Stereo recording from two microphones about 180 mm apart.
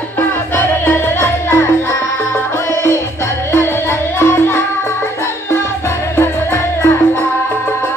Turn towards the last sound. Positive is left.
turn(degrees=15)  # may be behind; listen again after turning